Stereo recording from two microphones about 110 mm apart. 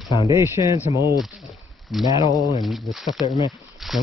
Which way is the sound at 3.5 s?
Centre (ahead or behind).